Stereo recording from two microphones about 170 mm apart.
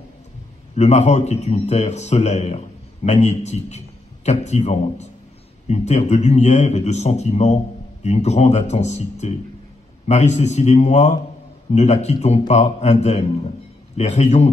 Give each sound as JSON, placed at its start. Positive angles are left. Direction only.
{"t": 0.7, "sound": "a man's voice", "side_deg": 40}